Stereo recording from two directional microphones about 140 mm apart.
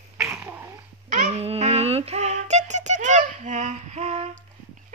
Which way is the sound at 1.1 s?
60° right (ahead or behind).